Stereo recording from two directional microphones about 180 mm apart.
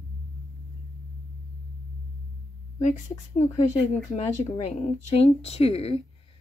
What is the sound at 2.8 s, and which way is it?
Speech, 45° left (ahead or behind).